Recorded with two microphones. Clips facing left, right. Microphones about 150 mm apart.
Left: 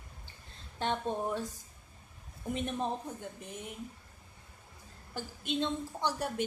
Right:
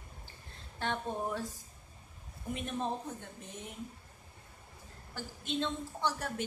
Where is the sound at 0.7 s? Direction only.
20° left (ahead or behind).